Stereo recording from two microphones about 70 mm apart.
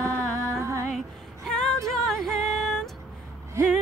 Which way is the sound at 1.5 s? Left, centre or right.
Centre.